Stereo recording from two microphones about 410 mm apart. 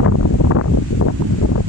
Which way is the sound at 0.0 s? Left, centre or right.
Left.